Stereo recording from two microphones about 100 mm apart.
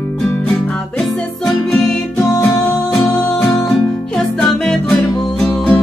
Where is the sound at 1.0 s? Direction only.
5° left (ahead or behind).